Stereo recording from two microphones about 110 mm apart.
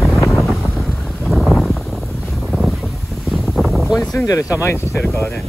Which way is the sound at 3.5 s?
Centre (ahead or behind).